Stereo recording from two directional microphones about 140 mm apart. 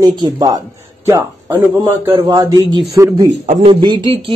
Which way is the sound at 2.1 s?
30° right (ahead or behind).